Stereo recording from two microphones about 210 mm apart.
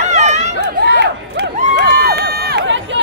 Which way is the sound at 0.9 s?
55° right (ahead or behind).